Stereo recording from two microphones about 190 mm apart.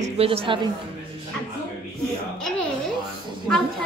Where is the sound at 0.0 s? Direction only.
30° right (ahead or behind).